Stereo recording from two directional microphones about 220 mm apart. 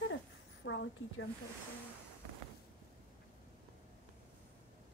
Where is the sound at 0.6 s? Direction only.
55° left (ahead or behind).